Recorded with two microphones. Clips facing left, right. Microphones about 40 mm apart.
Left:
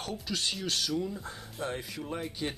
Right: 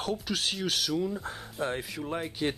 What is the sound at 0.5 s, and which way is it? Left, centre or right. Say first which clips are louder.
Speech: right 2 dB; centre.